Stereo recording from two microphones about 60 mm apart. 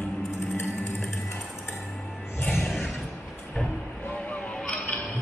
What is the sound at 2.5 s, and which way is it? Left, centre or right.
Music, left.